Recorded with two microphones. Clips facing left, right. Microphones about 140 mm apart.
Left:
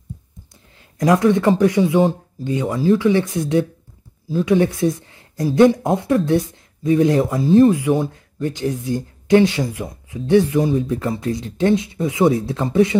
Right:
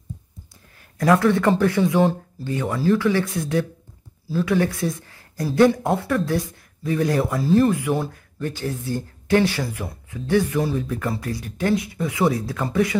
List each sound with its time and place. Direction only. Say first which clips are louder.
0.9 s speech: left 2 dB; 20° left (ahead or behind)